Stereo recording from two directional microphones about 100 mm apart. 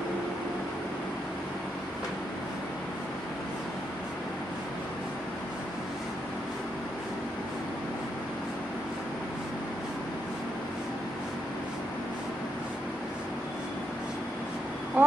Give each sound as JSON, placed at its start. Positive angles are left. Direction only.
{"t": 15.0, "sound": "vehicle", "side_deg": -20}